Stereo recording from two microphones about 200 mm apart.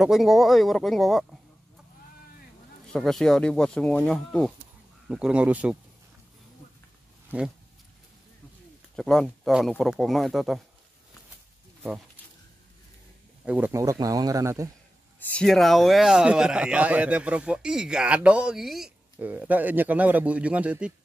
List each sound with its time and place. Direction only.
0.0 s a man's voice: centre (ahead or behind)
2.9 s a man's voice: centre (ahead or behind)
7.2 s speech: 5° right (ahead or behind)
8.9 s a man's voice: 5° left (ahead or behind)
13.5 s speech: 10° right (ahead or behind)
15.1 s a man's voice: 5° left (ahead or behind)